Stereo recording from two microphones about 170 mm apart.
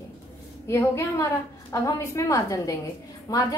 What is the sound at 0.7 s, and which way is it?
A woman's voice, 15° left (ahead or behind).